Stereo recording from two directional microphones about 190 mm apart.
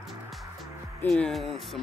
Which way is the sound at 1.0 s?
5° left (ahead or behind).